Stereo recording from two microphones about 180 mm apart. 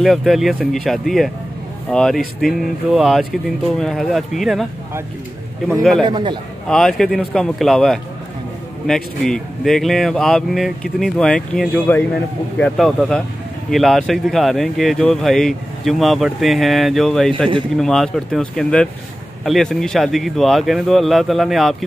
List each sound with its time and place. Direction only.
0.0 s speech: centre (ahead or behind)
5.7 s speech: centre (ahead or behind)
6.0 s a man's voice: 25° right (ahead or behind)
6.7 s speech: centre (ahead or behind)